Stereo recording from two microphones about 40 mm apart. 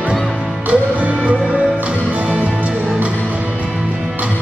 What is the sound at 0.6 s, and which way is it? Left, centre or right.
Music, right.